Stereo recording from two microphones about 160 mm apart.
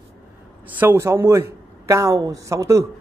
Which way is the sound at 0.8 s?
15° right (ahead or behind).